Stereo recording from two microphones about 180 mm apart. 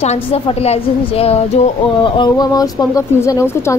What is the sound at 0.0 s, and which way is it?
A woman's voice, 35° left (ahead or behind).